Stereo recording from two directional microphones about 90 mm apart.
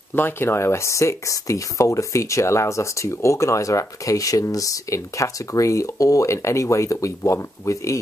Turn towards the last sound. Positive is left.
turn(degrees=35)  # may be behind; listen again after turning